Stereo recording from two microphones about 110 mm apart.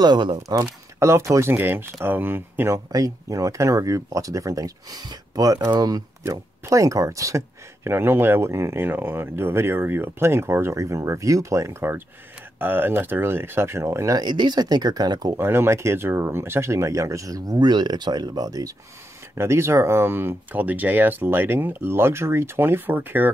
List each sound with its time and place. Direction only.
0.0 s speech: 40° right (ahead or behind)
0.5 s speech: 25° right (ahead or behind)
2.9 s speech: 30° right (ahead or behind)
14.2 s speech: 45° right (ahead or behind)
15.3 s speech: 20° right (ahead or behind)
19.3 s speech: 25° right (ahead or behind)